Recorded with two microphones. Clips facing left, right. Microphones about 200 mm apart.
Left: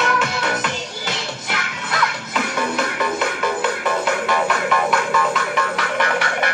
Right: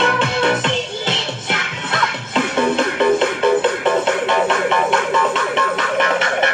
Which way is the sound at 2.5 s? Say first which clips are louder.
Right 7 dB; 25° right (ahead or behind).